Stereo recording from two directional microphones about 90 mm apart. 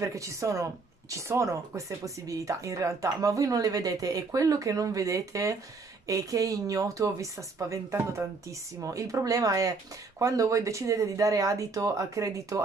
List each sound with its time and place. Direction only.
0.0 s speech: 35° right (ahead or behind)